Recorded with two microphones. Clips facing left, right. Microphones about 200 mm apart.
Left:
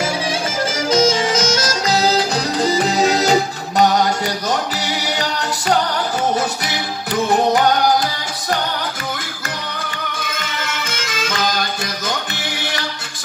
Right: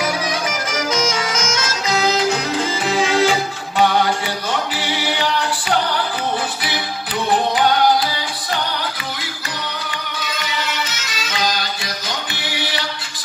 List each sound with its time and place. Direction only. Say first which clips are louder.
0.0 s music: left 1 dB; 30° left (ahead or behind)
10.1 s music: right 1 dB; 50° left (ahead or behind)